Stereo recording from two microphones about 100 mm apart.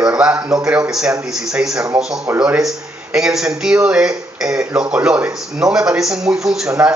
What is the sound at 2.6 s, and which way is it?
A man's voice, 5° right (ahead or behind).